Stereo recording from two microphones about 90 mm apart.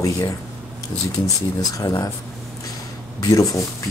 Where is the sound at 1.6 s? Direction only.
40° left (ahead or behind).